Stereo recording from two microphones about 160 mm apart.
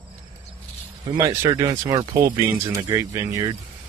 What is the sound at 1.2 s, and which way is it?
Speech, 25° right (ahead or behind).